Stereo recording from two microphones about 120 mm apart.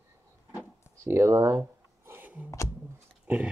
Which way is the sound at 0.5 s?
20° right (ahead or behind).